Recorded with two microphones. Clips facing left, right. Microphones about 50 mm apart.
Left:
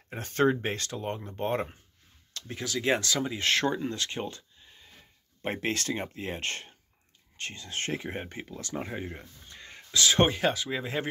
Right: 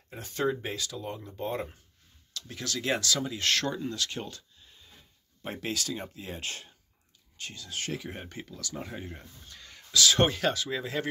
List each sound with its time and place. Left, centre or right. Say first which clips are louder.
0.1 s speech: left 5 dB; left
2.4 s speech: left 3 dB; left
5.4 s speech: left 3 dB; left
8.9 s speech: left 4 dB; left